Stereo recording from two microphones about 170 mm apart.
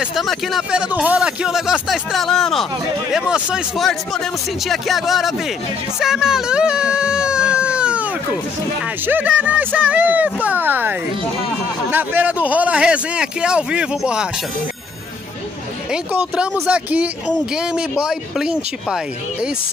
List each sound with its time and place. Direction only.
0.0 s a man's voice: centre (ahead or behind)
15.9 s a man's voice: 5° right (ahead or behind)